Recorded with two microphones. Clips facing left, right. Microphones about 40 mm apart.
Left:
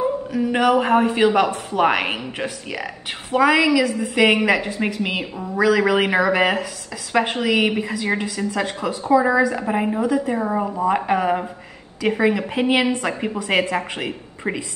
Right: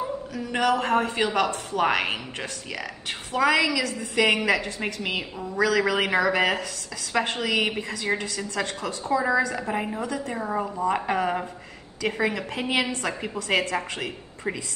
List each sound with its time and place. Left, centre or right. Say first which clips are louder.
0.3 s a woman's voice: left 6 dB; centre